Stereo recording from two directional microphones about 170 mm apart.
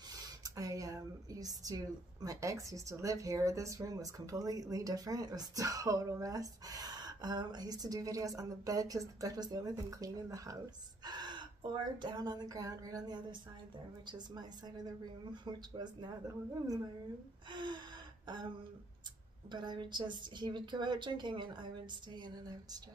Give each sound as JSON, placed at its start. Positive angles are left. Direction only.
{"t": 0.1, "sound": "a sound", "side_deg": -20}
{"t": 2.2, "sound": "speech", "side_deg": -20}
{"t": 17.5, "sound": "gasp", "side_deg": -25}
{"t": 19.5, "sound": "speech", "side_deg": -25}